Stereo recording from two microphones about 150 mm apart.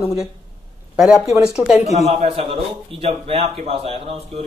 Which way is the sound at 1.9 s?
45° right (ahead or behind).